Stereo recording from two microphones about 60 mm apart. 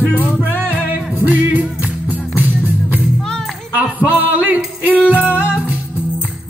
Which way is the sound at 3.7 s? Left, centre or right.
Right.